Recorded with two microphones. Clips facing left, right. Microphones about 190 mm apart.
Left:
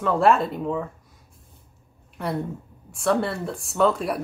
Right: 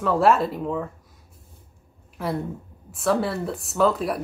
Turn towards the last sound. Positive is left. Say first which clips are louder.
# even
turn(degrees=0)  # may be behind; listen again after turning